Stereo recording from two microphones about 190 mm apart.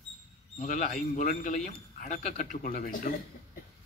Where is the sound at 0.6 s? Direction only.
45° left (ahead or behind).